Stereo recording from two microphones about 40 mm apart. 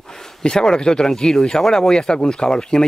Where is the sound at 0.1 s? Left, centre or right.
Centre.